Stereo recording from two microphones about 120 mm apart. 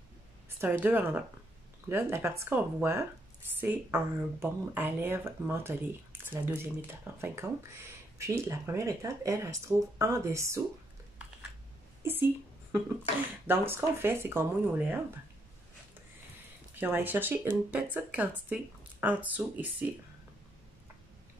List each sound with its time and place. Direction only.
0.6 s speech: 15° right (ahead or behind)
12.0 s a woman's voice: 20° right (ahead or behind)
16.8 s speech: 15° right (ahead or behind)